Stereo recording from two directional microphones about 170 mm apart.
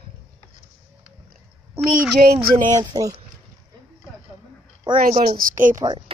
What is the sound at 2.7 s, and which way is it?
Speech, 20° right (ahead or behind).